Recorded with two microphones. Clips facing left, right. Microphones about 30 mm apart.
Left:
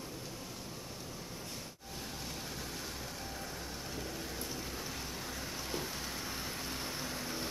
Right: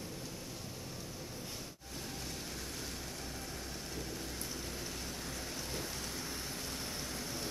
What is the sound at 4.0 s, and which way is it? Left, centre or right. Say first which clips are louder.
Rain: left 2 dB; centre.